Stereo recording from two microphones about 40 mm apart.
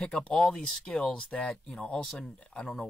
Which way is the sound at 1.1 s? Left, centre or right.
Left.